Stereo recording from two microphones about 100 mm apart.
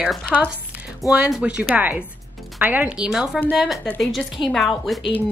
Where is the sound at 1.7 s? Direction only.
15° right (ahead or behind).